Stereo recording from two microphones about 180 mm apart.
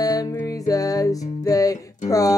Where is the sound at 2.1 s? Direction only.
20° left (ahead or behind).